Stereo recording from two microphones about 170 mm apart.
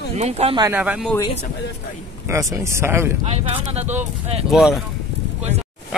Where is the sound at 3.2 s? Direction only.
40° right (ahead or behind).